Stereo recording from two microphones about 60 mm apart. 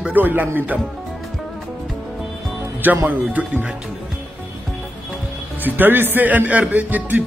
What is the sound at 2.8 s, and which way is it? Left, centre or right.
Speech, right.